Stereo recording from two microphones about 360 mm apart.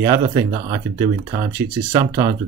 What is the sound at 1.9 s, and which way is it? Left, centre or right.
Speech, centre.